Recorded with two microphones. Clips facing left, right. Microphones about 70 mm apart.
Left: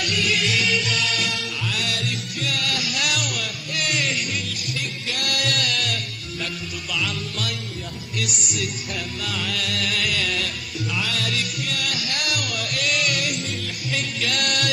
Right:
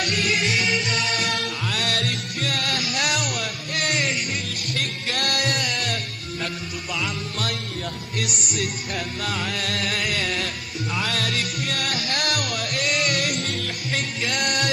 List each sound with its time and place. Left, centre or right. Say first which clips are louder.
0.0 s music: even; right
1.2 s music: right 2 dB; right
13.7 s music: right 1 dB; right